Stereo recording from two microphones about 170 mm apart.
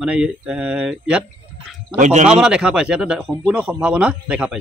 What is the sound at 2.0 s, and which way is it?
Speech, 45° right (ahead or behind).